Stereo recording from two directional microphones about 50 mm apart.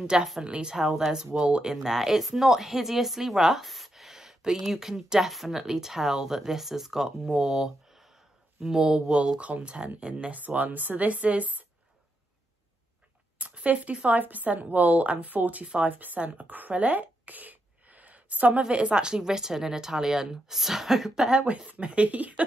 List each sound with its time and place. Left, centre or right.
0.0 s speech: centre
13.4 s speech: right; by 21.4 s centre
21.6 s speech: right